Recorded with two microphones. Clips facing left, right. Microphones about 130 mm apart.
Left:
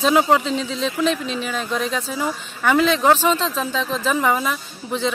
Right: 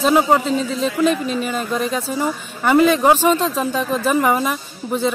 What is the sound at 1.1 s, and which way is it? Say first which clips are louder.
Speech: right 3 dB; 50° right (ahead or behind).